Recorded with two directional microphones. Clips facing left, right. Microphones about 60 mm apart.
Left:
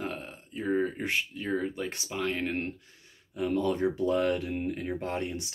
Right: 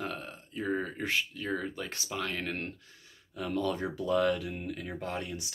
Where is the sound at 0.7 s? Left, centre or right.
Centre.